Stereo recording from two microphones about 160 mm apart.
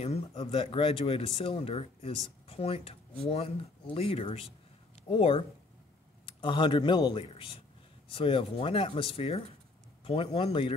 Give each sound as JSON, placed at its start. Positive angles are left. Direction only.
{"t": 0.3, "sound": "speech", "side_deg": 35}